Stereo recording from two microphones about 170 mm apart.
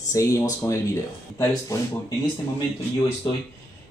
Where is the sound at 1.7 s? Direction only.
20° left (ahead or behind).